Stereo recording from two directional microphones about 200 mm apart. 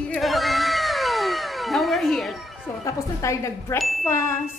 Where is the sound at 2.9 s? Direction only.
15° left (ahead or behind).